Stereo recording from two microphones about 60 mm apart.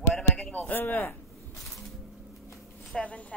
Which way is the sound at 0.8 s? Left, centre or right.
Left.